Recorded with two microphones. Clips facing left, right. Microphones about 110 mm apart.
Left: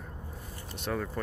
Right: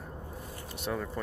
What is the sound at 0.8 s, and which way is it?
Speech, centre (ahead or behind).